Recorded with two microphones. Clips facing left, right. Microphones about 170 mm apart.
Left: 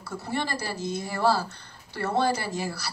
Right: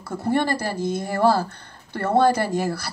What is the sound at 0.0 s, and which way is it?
Speech, 55° right (ahead or behind).